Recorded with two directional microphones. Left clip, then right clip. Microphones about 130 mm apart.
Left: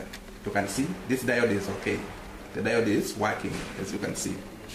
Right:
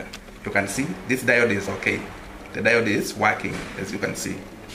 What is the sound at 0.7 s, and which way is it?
Speech, 15° right (ahead or behind).